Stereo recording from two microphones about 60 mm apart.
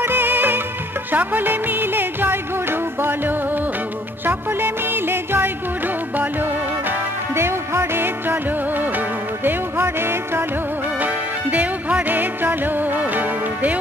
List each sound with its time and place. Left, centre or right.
0.0 s music: right
7.3 s music: right
11.5 s music: right